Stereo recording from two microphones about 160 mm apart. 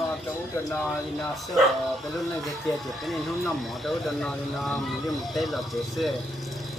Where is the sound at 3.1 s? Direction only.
Centre (ahead or behind).